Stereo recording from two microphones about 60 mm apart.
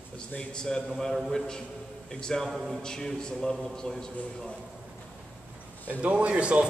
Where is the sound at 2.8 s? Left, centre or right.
Centre.